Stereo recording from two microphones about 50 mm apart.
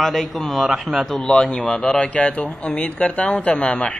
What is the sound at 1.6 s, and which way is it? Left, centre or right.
Speech, centre.